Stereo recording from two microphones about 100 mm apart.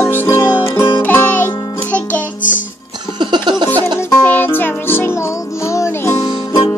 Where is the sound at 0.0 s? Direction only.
25° left (ahead or behind).